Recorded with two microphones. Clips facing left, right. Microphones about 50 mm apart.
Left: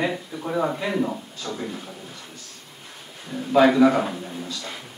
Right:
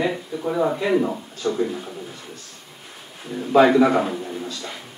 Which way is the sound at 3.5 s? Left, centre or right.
Centre.